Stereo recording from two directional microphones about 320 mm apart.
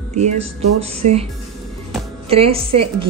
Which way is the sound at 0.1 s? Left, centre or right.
Centre.